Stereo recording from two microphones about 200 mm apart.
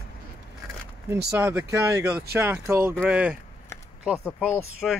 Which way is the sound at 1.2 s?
15° right (ahead or behind).